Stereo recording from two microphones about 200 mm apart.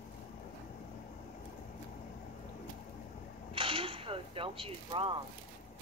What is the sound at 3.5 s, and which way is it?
Mechanisms, 25° right (ahead or behind).